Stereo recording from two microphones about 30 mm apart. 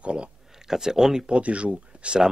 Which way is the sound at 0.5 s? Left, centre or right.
Centre.